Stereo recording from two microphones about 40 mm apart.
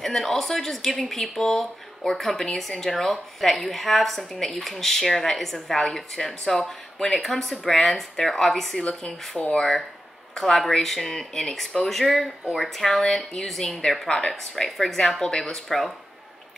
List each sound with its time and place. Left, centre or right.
0.0 s a woman's voice: centre
14.3 s speech: centre